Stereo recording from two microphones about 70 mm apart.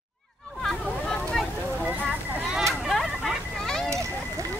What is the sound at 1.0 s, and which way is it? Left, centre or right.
Vehicle, centre.